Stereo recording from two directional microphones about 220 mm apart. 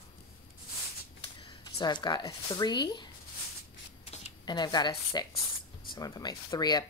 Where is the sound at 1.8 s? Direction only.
20° left (ahead or behind).